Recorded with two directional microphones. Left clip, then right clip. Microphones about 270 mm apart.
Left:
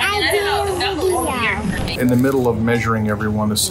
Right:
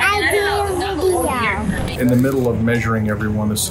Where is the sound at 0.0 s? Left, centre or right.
Centre.